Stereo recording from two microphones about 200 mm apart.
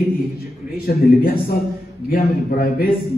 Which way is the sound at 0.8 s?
50° left (ahead or behind).